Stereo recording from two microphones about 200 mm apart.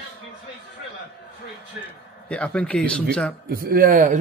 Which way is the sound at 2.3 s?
5° left (ahead or behind).